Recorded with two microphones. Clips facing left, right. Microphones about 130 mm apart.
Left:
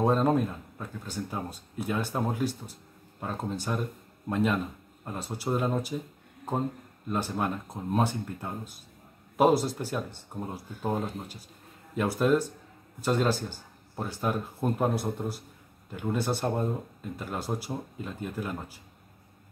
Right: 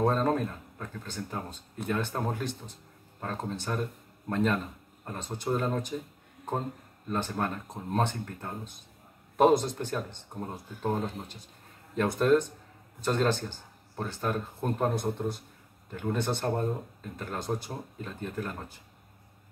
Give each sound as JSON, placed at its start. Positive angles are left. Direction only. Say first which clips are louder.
{"t": 0.0, "sound": "speech", "louder": "left 2 dB", "side_deg": 15}
{"t": 7.1, "sound": "speech", "louder": "left 1 dB", "side_deg": 10}